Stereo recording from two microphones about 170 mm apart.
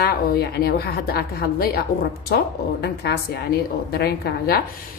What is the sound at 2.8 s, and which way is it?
A woman's voice, 70° left (ahead or behind).